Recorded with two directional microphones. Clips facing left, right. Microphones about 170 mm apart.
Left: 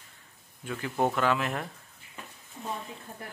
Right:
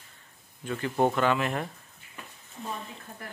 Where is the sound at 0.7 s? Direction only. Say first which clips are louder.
Right 3 dB; 5° left (ahead or behind).